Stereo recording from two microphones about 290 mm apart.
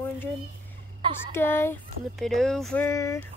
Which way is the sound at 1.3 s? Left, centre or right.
Centre.